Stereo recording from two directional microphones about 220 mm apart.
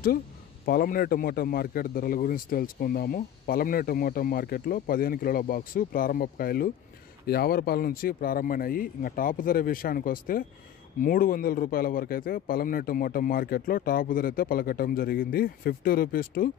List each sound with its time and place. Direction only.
0.7 s a man's voice: 45° left (ahead or behind)